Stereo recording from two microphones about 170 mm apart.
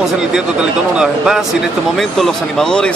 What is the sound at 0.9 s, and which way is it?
Speech, 5° right (ahead or behind).